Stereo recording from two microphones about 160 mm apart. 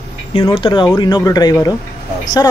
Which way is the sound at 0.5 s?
30° left (ahead or behind).